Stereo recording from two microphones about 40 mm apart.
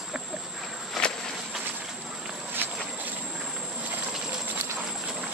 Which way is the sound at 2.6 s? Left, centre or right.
Right.